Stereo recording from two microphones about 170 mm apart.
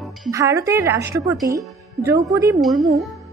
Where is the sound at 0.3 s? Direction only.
20° right (ahead or behind).